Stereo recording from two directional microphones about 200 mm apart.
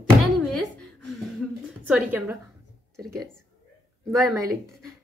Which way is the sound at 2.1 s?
10° right (ahead or behind).